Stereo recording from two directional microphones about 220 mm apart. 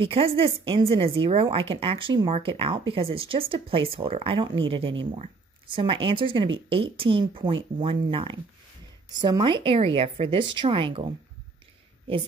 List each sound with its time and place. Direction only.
0.0 s speech: 25° right (ahead or behind)